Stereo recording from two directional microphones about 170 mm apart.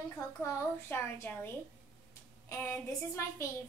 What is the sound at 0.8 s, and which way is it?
A woman's voice, 15° left (ahead or behind).